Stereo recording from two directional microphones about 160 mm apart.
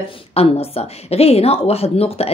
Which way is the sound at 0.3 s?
40° left (ahead or behind).